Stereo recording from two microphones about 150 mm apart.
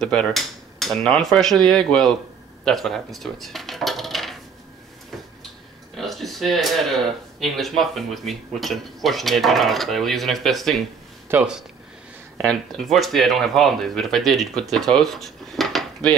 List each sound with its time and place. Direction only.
0.0 s speech: 5° left (ahead or behind)
2.6 s coin: centre (ahead or behind)
5.9 s a sound: centre (ahead or behind)
7.3 s speech: centre (ahead or behind)
11.3 s speech: 15° right (ahead or behind)
12.4 s speech: centre (ahead or behind)